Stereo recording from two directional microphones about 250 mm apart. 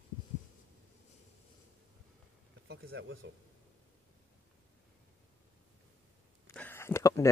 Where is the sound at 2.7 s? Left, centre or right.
Right.